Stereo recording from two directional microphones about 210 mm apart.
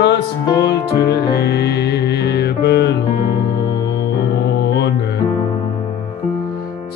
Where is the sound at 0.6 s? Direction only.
50° left (ahead or behind).